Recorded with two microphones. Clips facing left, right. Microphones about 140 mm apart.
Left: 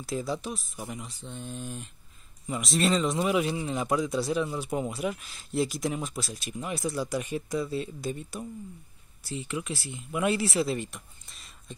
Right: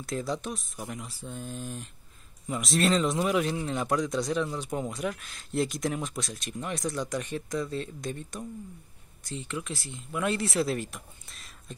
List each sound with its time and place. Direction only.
0.0 s speech: 5° left (ahead or behind)